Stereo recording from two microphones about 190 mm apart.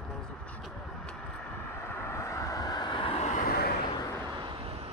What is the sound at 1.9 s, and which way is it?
Vehicle, 15° left (ahead or behind).